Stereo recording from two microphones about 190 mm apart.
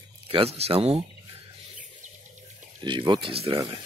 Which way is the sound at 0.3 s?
30° right (ahead or behind).